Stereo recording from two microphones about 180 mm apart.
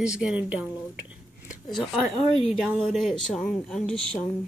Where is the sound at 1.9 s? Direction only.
Centre (ahead or behind).